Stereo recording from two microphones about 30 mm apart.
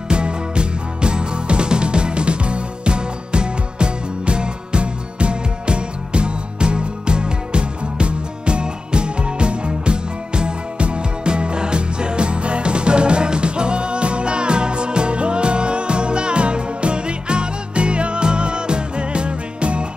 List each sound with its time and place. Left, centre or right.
0.1 s music: right